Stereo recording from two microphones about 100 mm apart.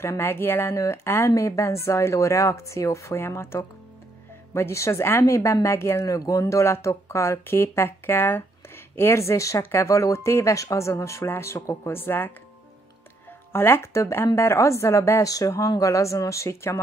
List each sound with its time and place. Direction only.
0.0 s a woman's voice: 25° left (ahead or behind)
13.5 s a woman's voice: 25° left (ahead or behind)